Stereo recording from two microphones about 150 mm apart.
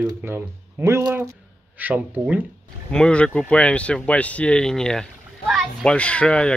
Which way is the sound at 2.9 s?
5° left (ahead or behind).